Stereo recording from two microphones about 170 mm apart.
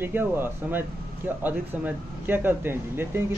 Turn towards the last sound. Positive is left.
turn(degrees=-15)  # may be behind; listen again after turning